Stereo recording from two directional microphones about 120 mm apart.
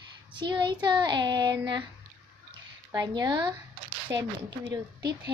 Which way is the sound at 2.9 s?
35° right (ahead or behind).